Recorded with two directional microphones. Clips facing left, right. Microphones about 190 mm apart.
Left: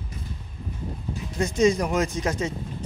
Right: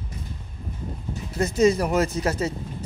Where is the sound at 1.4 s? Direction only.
5° right (ahead or behind).